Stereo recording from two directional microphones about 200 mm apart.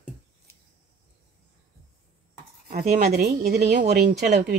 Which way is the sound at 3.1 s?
50° right (ahead or behind).